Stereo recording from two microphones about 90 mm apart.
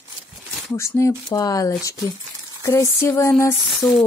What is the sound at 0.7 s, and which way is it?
Speech, 35° left (ahead or behind).